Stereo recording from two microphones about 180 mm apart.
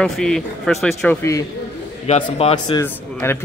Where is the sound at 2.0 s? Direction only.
35° left (ahead or behind).